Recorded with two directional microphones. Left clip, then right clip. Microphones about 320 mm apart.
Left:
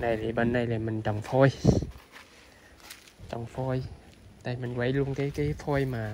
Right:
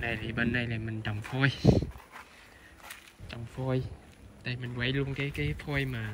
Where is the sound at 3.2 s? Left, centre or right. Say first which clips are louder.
Left 4 dB; centre.